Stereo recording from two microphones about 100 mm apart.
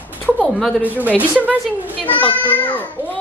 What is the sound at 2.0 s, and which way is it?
A child's voice, 15° left (ahead or behind).